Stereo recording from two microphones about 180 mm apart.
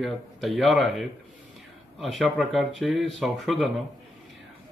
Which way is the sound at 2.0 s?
Centre (ahead or behind).